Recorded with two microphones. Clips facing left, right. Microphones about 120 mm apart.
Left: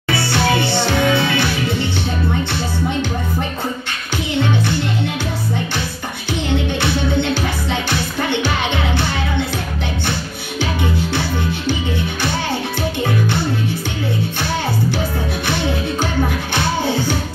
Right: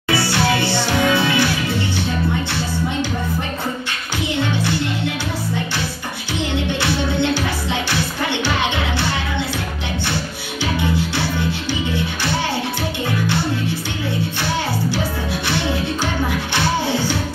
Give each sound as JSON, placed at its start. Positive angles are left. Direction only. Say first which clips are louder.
{"t": 0.1, "sound": "music", "louder": "left 1 dB", "side_deg": 20}